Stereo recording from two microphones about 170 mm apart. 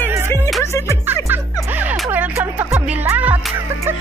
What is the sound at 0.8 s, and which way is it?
Speech, 10° right (ahead or behind).